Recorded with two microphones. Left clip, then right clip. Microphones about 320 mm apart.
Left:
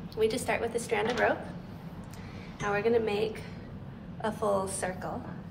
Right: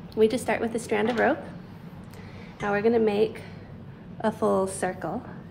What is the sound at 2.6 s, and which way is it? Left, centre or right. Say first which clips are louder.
A woman's voice: right 5 dB; right.